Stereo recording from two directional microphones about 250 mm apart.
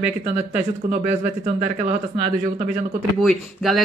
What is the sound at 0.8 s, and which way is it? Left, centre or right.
Speech, right.